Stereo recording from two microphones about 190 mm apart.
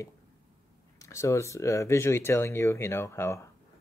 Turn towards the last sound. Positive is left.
turn(degrees=15)  # may be behind; listen again after turning